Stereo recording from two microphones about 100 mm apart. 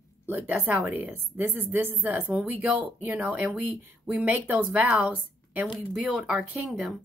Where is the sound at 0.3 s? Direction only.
20° right (ahead or behind).